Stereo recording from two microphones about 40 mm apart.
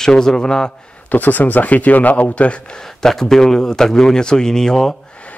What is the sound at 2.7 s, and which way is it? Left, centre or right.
Speech, centre.